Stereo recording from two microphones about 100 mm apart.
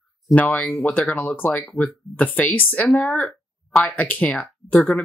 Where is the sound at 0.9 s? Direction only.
15° left (ahead or behind).